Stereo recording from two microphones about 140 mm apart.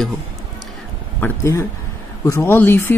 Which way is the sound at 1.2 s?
20° left (ahead or behind).